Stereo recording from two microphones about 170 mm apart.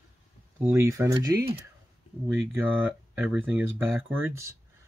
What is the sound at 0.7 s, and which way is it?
Speech, 15° right (ahead or behind).